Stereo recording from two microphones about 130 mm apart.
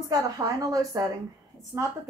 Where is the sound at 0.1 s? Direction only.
25° right (ahead or behind).